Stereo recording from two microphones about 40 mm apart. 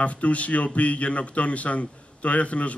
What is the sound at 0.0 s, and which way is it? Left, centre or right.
A man's voice, left.